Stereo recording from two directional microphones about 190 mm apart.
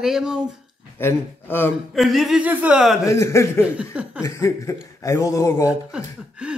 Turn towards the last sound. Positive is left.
turn(degrees=-5)  # may be behind; listen again after turning